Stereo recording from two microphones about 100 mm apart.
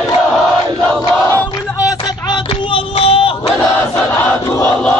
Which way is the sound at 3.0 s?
65° left (ahead or behind).